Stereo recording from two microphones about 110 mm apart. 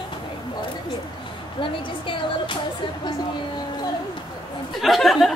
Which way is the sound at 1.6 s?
50° left (ahead or behind).